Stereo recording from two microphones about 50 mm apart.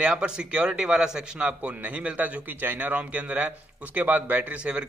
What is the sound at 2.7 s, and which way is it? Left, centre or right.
A man's voice, right.